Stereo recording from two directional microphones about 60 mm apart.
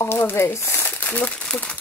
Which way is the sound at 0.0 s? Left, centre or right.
Left.